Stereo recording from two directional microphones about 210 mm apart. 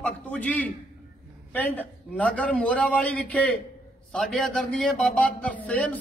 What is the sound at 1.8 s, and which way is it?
A man's voice, 5° left (ahead or behind).